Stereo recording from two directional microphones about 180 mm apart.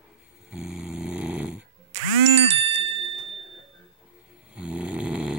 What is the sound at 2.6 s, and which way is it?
Bicycle bell, 30° right (ahead or behind).